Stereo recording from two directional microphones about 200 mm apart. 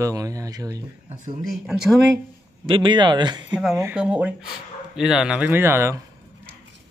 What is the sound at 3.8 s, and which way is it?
A man's voice, 10° right (ahead or behind).